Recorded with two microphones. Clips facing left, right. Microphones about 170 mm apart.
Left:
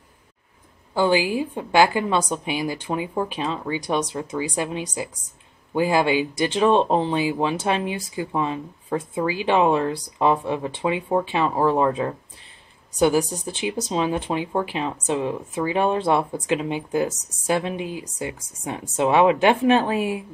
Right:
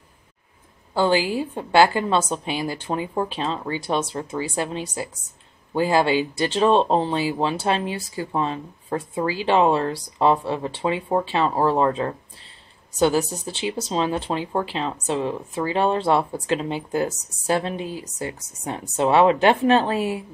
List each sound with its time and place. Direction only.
0.9 s speech: 15° left (ahead or behind)